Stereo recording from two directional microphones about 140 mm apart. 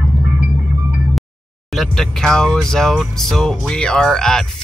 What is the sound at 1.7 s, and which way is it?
Speech, centre (ahead or behind).